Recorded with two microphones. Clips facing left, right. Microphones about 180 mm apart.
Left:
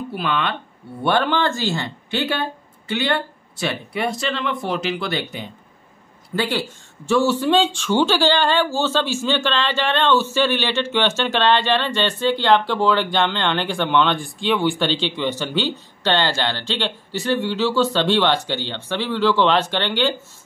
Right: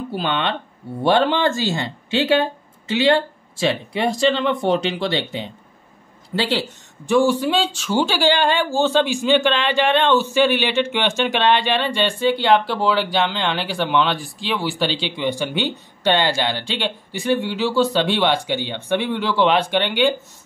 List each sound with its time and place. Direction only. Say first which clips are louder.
0.1 s speech: right 1 dB; 30° right (ahead or behind)
3.6 s speech: right 3 dB; 30° right (ahead or behind); by 20.2 s 15° right (ahead or behind)